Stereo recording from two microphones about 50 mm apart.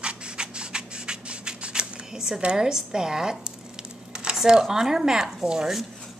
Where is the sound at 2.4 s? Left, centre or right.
Centre.